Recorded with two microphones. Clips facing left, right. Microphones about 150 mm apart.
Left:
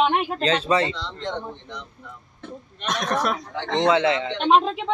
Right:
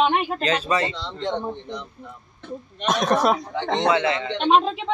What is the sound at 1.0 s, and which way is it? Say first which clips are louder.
Speech: right 3 dB; 20° right (ahead or behind).